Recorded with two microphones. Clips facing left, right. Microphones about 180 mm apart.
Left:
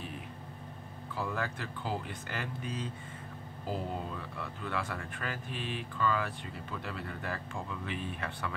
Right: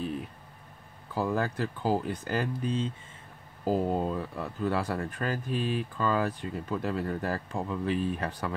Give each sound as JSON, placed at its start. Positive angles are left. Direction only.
{"t": 1.1, "sound": "speech", "side_deg": -35}